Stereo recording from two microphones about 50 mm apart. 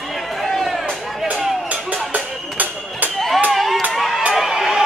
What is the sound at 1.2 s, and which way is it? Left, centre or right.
Music, right.